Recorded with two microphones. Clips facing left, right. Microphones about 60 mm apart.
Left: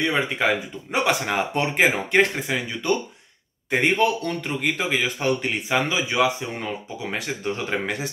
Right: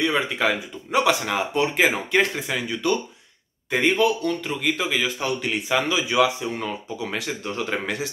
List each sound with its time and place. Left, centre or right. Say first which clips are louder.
0.0 s speech: even; left
2.4 s speech: right 1 dB; left
3.7 s speech: even; left